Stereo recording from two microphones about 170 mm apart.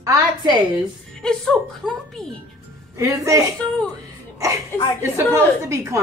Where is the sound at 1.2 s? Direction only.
5° left (ahead or behind).